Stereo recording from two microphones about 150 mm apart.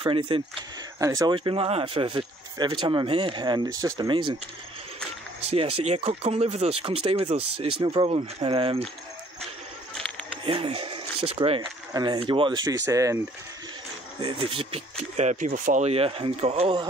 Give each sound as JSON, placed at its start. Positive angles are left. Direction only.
{"t": 0.0, "sound": "speech", "side_deg": -35}
{"t": 0.9, "sound": "speech", "side_deg": -20}
{"t": 5.4, "sound": "speech", "side_deg": -40}
{"t": 10.4, "sound": "speech", "side_deg": -40}
{"t": 11.9, "sound": "speech", "side_deg": -30}
{"t": 14.2, "sound": "speech", "side_deg": -40}
{"t": 15.9, "sound": "speech", "side_deg": -40}